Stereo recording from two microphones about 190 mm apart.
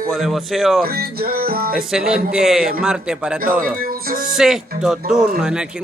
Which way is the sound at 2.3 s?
5° right (ahead or behind).